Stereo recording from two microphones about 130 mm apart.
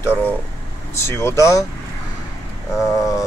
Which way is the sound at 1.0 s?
20° left (ahead or behind).